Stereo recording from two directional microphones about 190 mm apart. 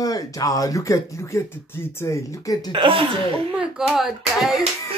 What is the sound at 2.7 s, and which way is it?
Speech, 25° right (ahead or behind).